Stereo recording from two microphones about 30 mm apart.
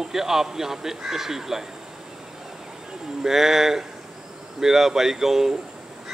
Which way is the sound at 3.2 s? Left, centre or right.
Centre.